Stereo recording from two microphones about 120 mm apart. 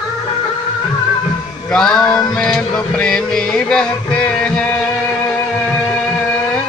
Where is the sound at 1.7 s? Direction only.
5° left (ahead or behind).